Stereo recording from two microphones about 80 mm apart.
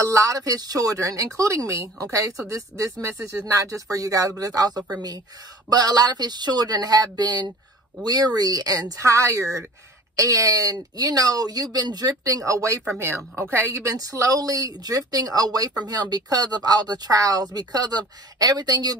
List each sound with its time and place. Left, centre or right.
0.0 s speech: right
13.0 s speech: right
13.8 s speech: right